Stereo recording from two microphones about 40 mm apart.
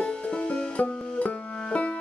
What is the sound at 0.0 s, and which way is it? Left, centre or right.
Music, left.